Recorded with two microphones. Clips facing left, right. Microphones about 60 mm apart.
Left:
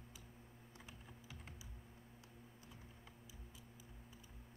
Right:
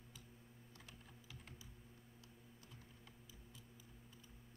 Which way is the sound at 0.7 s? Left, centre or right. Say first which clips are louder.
Left 4 dB; centre.